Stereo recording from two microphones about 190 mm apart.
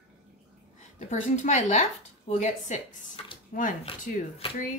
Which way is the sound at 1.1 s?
40° left (ahead or behind).